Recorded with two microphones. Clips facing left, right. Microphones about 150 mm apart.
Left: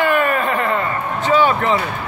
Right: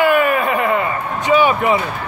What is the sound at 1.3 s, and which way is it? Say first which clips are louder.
Speech: right 2 dB; 15° right (ahead or behind).